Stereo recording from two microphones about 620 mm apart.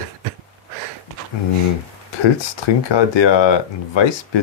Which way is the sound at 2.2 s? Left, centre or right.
Left.